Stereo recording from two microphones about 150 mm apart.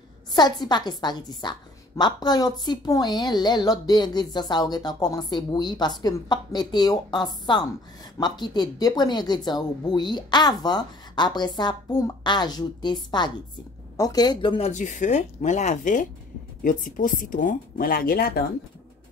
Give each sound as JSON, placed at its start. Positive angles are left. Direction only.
{"t": 0.3, "sound": "a woman's voice", "side_deg": 30}
{"t": 14.7, "sound": "speech", "side_deg": 55}